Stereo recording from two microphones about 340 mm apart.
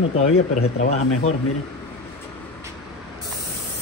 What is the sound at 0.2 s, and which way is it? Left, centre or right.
Speech, centre.